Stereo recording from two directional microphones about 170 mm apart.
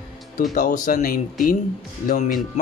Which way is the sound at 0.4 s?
50° left (ahead or behind).